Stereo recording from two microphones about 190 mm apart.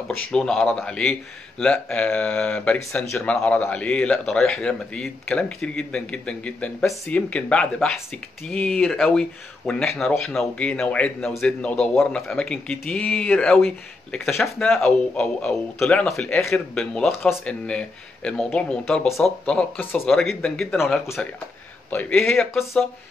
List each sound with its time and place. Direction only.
0.3 s speech: 5° left (ahead or behind)